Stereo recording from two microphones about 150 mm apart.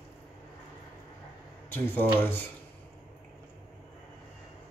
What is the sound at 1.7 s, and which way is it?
Speech, 15° left (ahead or behind).